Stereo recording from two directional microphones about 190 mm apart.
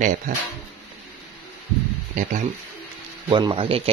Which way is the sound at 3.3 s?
25° right (ahead or behind).